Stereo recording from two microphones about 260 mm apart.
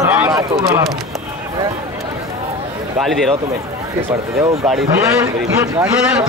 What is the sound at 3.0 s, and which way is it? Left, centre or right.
Speech, centre.